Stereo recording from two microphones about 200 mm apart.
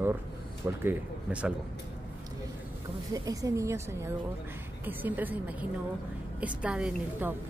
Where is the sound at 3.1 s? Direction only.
15° right (ahead or behind).